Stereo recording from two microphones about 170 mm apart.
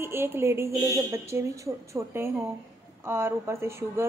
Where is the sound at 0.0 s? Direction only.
15° right (ahead or behind).